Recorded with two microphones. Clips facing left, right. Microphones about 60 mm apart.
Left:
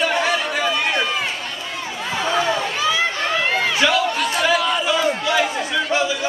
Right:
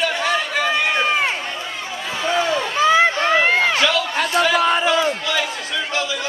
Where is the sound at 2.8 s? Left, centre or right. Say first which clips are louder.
Right 5 dB; right.